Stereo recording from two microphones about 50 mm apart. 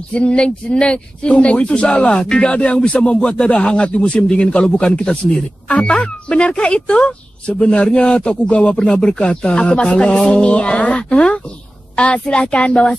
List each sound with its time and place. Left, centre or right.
0.1 s speech: left